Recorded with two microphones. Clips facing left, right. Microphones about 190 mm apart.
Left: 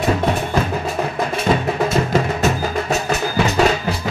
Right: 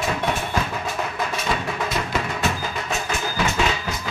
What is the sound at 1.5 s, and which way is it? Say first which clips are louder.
Music: left 11 dB; 40° left (ahead or behind).